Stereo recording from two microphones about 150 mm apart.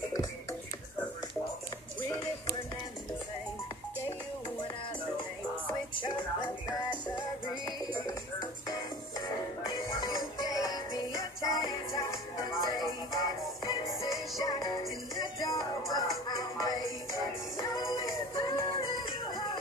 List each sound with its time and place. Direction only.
9.8 s music: 25° left (ahead or behind)
18.3 s music: 35° left (ahead or behind)